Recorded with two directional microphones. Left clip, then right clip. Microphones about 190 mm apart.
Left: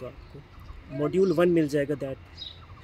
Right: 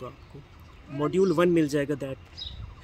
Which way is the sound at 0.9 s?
15° right (ahead or behind).